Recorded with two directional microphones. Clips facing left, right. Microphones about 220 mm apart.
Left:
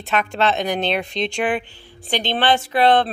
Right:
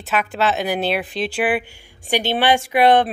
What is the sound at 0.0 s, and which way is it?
Speech, 5° right (ahead or behind).